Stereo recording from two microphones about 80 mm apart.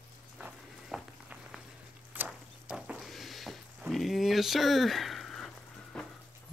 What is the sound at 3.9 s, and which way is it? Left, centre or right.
Speech, centre.